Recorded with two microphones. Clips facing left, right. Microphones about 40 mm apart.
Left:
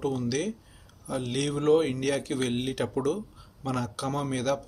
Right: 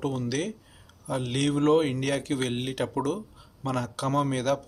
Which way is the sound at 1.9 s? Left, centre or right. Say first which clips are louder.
Even; centre.